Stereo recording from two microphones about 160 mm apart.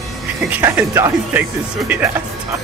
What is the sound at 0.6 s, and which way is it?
Speech, 15° right (ahead or behind).